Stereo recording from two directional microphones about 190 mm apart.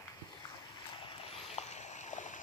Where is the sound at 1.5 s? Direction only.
35° left (ahead or behind).